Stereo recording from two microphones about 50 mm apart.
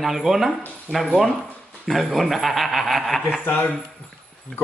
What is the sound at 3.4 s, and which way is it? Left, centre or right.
Speech, left.